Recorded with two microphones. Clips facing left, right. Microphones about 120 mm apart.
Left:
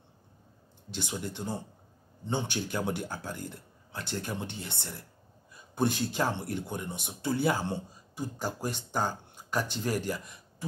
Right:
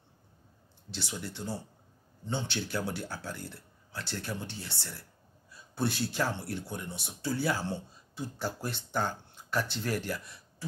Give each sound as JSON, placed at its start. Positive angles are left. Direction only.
{"t": 0.9, "sound": "speech", "side_deg": 15}
{"t": 5.5, "sound": "a sound", "side_deg": 15}
{"t": 6.1, "sound": "speech", "side_deg": 15}